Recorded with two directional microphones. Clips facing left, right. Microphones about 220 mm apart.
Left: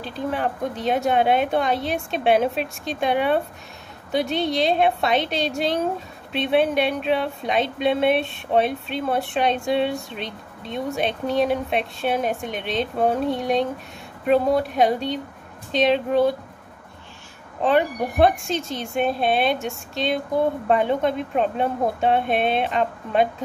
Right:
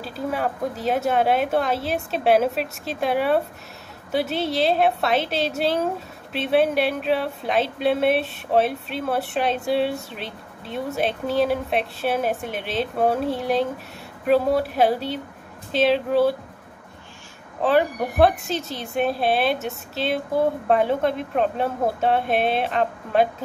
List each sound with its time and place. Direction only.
0.0 s speech: 5° right (ahead or behind)
17.6 s speech: 5° right (ahead or behind)